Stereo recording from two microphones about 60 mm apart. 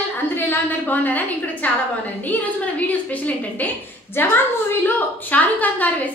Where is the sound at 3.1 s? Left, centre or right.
Left.